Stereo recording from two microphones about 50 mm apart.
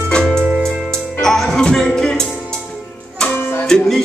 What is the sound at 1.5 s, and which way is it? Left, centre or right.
Music, centre.